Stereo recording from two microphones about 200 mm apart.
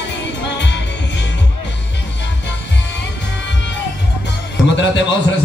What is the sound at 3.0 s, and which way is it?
Music, 60° left (ahead or behind).